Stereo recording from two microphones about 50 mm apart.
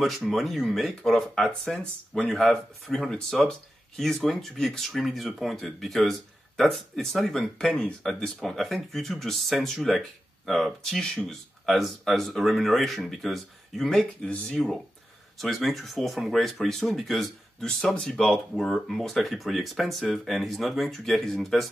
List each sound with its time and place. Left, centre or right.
0.0 s speech: centre
1.7 s speech: centre
7.3 s speech: left
8.0 s speech: centre